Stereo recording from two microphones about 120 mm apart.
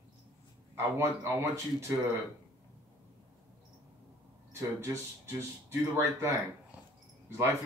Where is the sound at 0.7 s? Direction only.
20° right (ahead or behind).